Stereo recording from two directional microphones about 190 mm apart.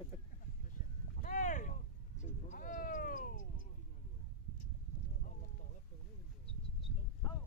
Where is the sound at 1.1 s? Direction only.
45° left (ahead or behind).